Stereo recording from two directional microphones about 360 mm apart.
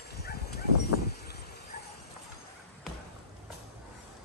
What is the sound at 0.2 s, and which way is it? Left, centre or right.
Bow-wow, left.